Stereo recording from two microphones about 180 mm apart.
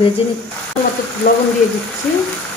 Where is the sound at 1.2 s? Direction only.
60° left (ahead or behind).